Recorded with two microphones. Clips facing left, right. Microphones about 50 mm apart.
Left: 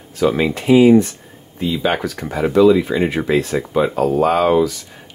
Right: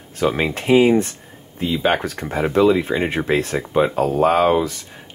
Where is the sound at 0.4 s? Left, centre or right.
Right.